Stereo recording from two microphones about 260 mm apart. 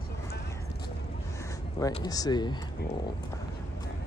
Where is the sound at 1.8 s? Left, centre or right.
Centre.